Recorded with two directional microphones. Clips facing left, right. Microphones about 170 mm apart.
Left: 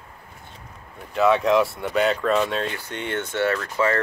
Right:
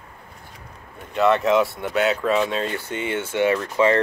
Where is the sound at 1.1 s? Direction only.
Centre (ahead or behind).